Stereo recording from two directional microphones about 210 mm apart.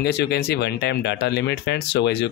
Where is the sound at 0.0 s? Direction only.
50° left (ahead or behind).